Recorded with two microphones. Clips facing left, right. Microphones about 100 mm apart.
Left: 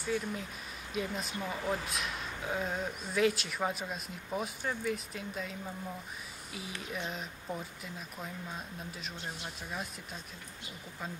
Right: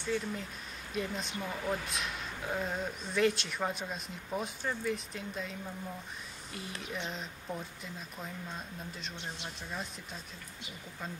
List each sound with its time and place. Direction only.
0.0 s speech: 5° left (ahead or behind)
6.9 s speech: 5° left (ahead or behind)
9.1 s speech: 20° right (ahead or behind)